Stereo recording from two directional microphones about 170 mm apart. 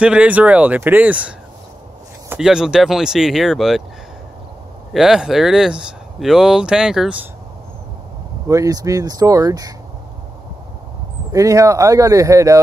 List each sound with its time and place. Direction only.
0.0 s speech: 5° right (ahead or behind)
4.9 s speech: 5° right (ahead or behind)
8.5 s speech: 20° right (ahead or behind)
11.3 s speech: 20° right (ahead or behind)